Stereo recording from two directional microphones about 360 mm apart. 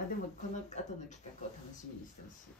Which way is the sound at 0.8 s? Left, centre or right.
Centre.